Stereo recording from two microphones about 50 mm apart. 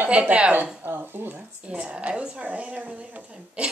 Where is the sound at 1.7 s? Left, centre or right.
Right.